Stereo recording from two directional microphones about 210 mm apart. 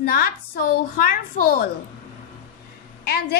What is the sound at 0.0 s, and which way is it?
A woman's voice, 50° left (ahead or behind).